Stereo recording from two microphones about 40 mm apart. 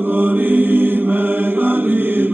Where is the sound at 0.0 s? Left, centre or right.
Right.